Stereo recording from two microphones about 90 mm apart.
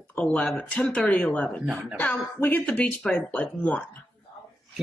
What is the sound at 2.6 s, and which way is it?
Speech, 15° left (ahead or behind).